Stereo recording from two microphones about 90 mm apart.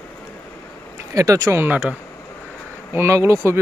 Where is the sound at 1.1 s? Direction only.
40° right (ahead or behind); by 2.0 s 20° right (ahead or behind).